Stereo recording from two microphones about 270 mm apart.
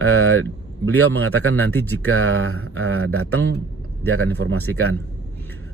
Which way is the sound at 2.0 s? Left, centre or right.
Right.